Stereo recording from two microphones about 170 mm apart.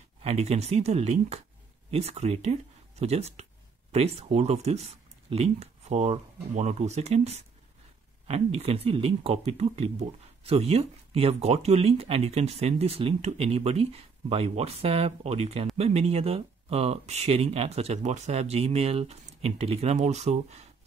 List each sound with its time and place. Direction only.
0.2 s speech: 40° right (ahead or behind)